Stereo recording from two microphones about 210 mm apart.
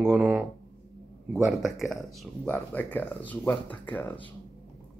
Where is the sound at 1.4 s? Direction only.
Centre (ahead or behind).